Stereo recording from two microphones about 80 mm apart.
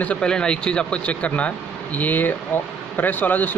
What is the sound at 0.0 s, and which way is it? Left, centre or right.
A man's voice, centre.